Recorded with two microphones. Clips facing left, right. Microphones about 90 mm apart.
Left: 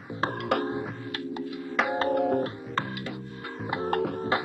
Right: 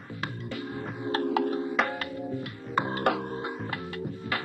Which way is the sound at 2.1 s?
70° left (ahead or behind).